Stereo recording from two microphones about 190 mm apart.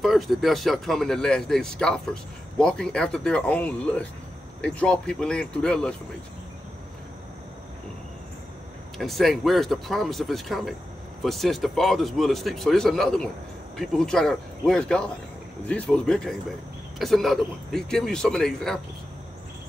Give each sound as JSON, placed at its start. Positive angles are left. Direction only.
{"t": 0.0, "sound": "speech", "side_deg": 0}
{"t": 8.9, "sound": "speech", "side_deg": 0}